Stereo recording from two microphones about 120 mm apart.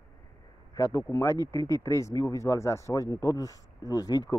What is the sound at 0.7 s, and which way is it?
Speech, 30° left (ahead or behind).